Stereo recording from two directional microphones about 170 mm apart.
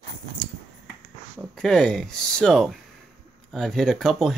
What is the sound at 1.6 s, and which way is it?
Speech, 5° left (ahead or behind).